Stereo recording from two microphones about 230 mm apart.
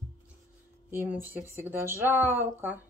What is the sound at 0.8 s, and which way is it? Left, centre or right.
Speech, centre.